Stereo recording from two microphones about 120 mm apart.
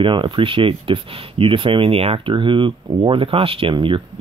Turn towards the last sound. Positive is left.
turn(degrees=-45)  # may be behind; listen again after turning